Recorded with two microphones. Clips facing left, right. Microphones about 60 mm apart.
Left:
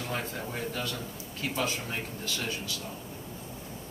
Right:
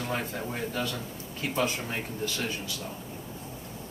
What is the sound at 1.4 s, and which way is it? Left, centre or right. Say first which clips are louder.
Speech: right 3 dB; centre.